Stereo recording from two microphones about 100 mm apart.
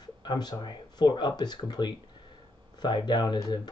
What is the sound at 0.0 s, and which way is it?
Speech, 45° left (ahead or behind).